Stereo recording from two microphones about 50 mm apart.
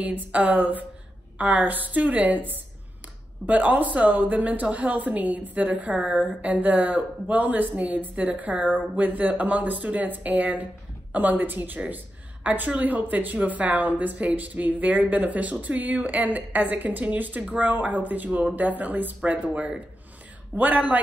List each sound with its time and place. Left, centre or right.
0.1 s a woman's voice: right
20.5 s a woman's voice: right